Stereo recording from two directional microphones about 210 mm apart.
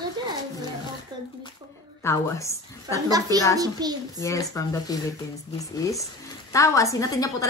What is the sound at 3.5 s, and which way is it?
Speech, 20° right (ahead or behind).